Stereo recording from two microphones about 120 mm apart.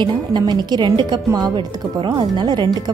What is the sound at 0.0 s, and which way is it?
A woman's voice, 35° right (ahead or behind).